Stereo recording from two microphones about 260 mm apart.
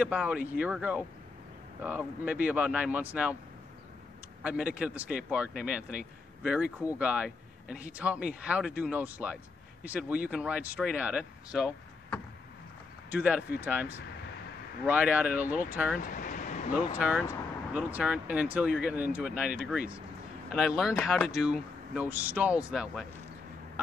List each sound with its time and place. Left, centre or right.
0.0 s speech: centre
4.4 s speech: centre
16.0 s vehicle: left
16.7 s speech: centre
20.5 s speech: centre